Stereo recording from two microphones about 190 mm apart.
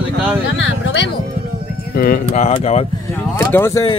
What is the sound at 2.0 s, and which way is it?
Speech, 50° left (ahead or behind).